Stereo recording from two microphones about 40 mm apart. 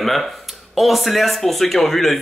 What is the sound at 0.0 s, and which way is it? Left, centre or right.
Speech, centre.